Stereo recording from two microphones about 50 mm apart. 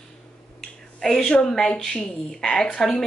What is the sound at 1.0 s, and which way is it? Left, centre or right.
Speech, centre.